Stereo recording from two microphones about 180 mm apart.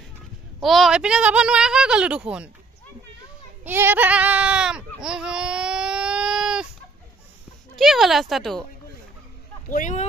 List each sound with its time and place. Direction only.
0.6 s speech: centre (ahead or behind)
3.6 s a sound: 10° right (ahead or behind)
7.7 s speech: centre (ahead or behind)
9.7 s speech: 45° left (ahead or behind)